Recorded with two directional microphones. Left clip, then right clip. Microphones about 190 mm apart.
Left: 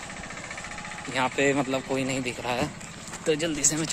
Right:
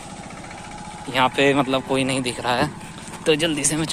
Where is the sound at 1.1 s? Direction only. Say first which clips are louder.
Right 7 dB; centre (ahead or behind).